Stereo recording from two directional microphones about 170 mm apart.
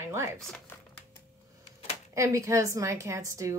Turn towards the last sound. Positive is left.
turn(degrees=-15)  # may be behind; listen again after turning